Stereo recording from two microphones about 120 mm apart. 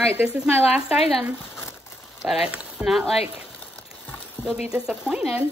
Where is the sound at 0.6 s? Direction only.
10° right (ahead or behind).